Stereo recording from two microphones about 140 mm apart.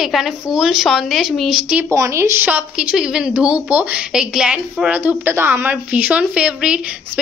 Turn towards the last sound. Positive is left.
turn(degrees=-5)  # may be behind; listen again after turning